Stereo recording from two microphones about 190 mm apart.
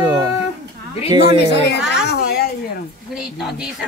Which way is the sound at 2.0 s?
60° left (ahead or behind).